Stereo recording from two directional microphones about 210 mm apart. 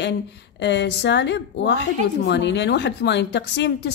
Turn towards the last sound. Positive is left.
turn(degrees=55)  # may be behind; listen again after turning